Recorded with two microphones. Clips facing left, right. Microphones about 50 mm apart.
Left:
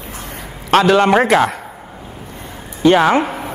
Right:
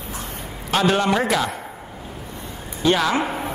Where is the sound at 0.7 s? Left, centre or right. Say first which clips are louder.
Left 7 dB; left.